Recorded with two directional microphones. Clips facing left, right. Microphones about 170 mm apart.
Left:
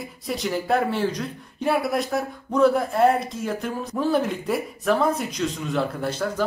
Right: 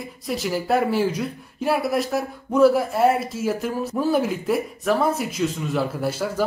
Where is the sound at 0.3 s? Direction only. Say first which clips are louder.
Right 1 dB; 5° right (ahead or behind).